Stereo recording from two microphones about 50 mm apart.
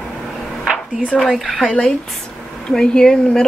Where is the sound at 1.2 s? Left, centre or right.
Centre.